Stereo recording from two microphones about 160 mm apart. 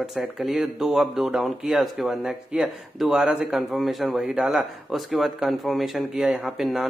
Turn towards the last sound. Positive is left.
turn(degrees=0)  # may be behind; listen again after turning